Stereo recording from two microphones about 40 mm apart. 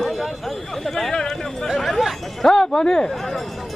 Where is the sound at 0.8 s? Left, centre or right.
Centre.